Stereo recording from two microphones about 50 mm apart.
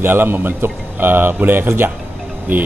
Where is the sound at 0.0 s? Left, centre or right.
Right.